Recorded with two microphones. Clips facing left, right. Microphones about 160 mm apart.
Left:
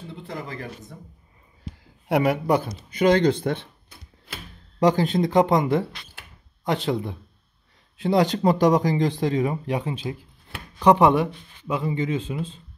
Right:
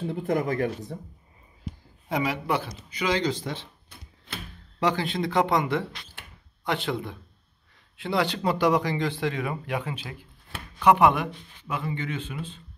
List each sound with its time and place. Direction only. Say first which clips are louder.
0.1 s speech: right 8 dB; 45° right (ahead or behind)
2.0 s speech: left 6 dB; 60° left (ahead or behind)
4.7 s speech: left 6 dB; 40° left (ahead or behind)